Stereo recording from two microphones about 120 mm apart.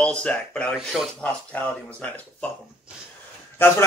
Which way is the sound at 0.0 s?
10° left (ahead or behind).